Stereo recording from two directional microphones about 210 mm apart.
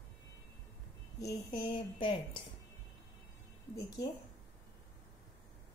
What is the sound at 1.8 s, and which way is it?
Speech, 20° left (ahead or behind).